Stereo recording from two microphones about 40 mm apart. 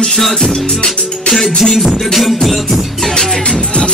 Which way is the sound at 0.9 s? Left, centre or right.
Centre.